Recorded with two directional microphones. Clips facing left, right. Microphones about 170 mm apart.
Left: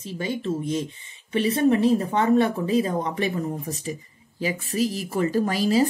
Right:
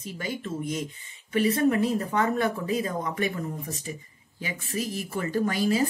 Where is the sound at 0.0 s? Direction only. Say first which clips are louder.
Left 5 dB; 25° left (ahead or behind).